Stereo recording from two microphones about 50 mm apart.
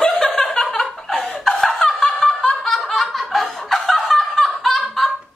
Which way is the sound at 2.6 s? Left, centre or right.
Centre.